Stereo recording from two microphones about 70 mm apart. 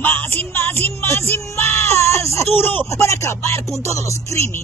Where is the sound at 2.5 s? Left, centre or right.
Left.